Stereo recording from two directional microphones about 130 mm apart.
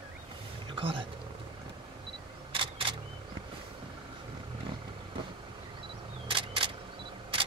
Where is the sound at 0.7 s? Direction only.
40° right (ahead or behind).